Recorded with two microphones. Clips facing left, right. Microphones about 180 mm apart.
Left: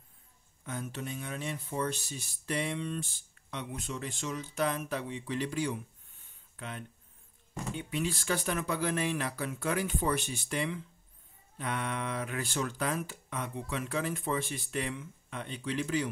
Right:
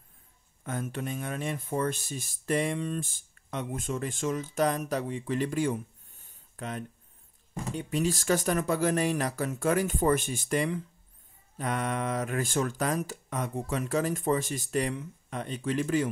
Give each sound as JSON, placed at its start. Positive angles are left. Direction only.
{"t": 0.7, "sound": "speech", "side_deg": -50}